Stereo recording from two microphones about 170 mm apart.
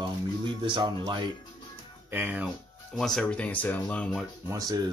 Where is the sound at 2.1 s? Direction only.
10° right (ahead or behind).